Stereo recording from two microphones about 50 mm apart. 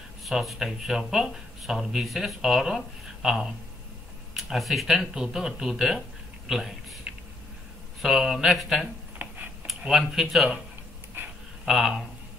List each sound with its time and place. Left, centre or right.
0.2 s speech: centre
7.1 s a sound: right
8.0 s speech: centre
11.6 s speech: centre